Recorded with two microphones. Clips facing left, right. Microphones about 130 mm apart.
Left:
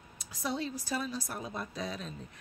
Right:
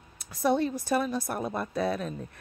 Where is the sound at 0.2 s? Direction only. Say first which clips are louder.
Right 10 dB; 60° right (ahead or behind).